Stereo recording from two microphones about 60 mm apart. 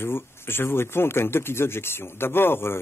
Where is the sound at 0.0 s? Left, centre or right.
Left.